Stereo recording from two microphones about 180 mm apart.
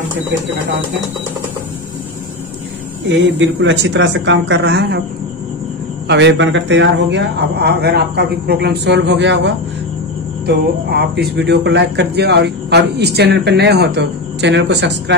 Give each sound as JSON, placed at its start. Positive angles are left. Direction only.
{"t": 3.1, "sound": "speech", "side_deg": -90}
{"t": 6.0, "sound": "speech", "side_deg": -85}
{"t": 10.4, "sound": "speech", "side_deg": -65}